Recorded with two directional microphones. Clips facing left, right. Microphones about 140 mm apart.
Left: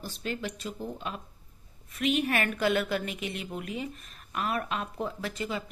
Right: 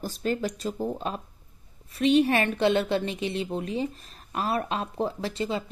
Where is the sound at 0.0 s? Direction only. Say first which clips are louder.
Right 7 dB; 40° right (ahead or behind).